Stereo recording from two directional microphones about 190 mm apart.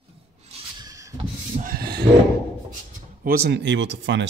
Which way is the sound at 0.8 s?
15° right (ahead or behind).